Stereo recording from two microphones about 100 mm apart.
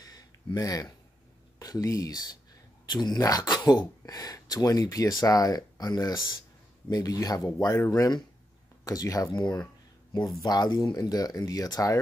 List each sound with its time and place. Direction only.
0.0 s a sound: 40° left (ahead or behind)
0.6 s speech: 35° left (ahead or behind)
10.4 s speech: 40° left (ahead or behind)